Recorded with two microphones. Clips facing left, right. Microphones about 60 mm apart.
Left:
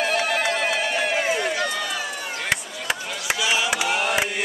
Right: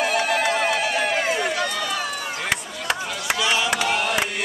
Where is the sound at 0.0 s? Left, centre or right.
Centre.